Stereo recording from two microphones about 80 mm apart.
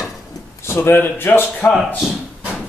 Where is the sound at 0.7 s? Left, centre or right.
Left.